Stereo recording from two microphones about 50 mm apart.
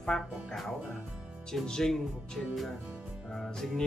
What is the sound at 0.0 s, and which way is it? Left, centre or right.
Speech, centre.